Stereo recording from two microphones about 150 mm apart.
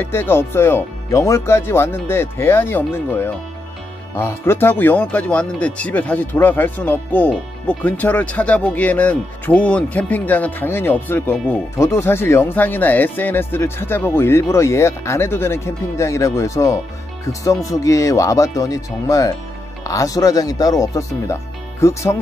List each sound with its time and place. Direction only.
0.0 s speech: 15° left (ahead or behind)